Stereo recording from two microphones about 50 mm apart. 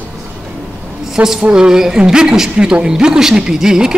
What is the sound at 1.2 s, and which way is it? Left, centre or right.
A woman's voice, centre.